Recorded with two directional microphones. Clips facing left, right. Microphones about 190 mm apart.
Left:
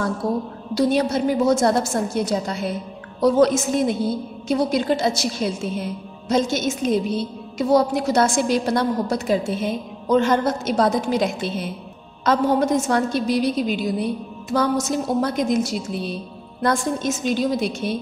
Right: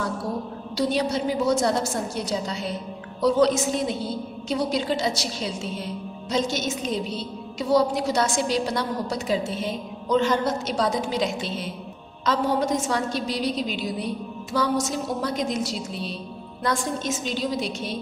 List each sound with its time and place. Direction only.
0.7 s a woman's voice: 50° left (ahead or behind)